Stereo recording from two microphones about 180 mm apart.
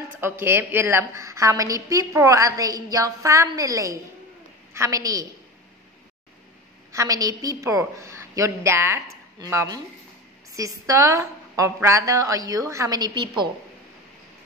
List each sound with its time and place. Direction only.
0.2 s a woman's voice: 10° right (ahead or behind)
6.9 s a woman's voice: 20° right (ahead or behind)